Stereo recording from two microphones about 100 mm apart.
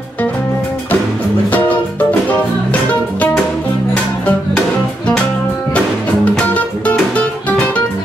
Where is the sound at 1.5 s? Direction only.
15° left (ahead or behind).